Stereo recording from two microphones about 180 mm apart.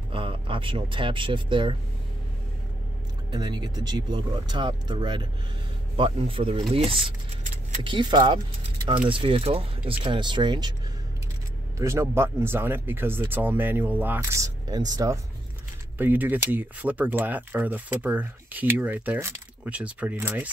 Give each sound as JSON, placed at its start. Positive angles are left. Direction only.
{"t": 0.1, "sound": "speech", "side_deg": -30}
{"t": 3.3, "sound": "speech", "side_deg": -25}
{"t": 11.8, "sound": "speech", "side_deg": -15}
{"t": 16.0, "sound": "speech", "side_deg": -10}